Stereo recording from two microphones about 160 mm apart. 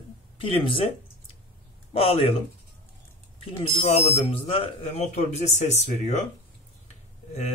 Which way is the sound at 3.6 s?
40° left (ahead or behind).